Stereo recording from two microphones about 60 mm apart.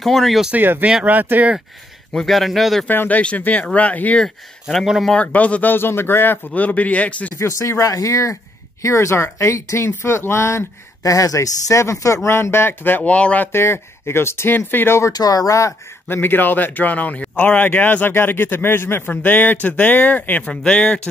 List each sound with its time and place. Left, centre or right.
0.0 s speech: centre
0.6 s speech: right
2.1 s speech: centre
2.9 s a man's voice: left
7.3 s speech: left
8.8 s speech: left
9.8 s speech: left
11.0 s speech: left
13.0 s a man's voice: left
13.5 s a man's voice: left
15.1 s speech: left
16.1 s a man's voice: left
17.6 s a man's voice: left
20.4 s speech: centre